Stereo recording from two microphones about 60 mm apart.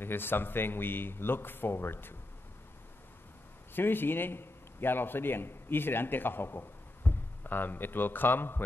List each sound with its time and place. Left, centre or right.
0.0 s a man's voice: left
3.7 s a man's voice: left